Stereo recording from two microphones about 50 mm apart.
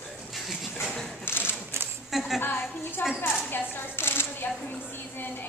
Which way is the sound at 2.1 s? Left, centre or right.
Centre.